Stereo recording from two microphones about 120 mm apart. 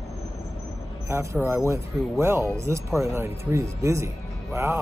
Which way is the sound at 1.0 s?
20° right (ahead or behind).